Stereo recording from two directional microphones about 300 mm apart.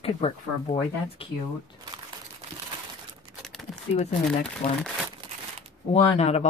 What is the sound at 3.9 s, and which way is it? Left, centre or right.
Speech, left.